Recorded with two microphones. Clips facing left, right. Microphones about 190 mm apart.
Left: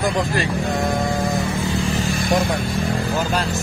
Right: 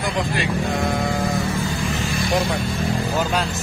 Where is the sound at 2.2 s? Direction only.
55° left (ahead or behind).